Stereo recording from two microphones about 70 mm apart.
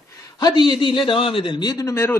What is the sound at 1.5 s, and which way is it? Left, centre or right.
Speech, left.